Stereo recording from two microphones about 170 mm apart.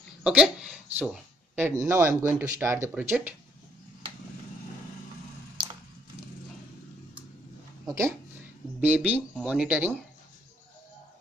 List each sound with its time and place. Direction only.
0.2 s speech: 5° right (ahead or behind)
7.8 s speech: 15° right (ahead or behind)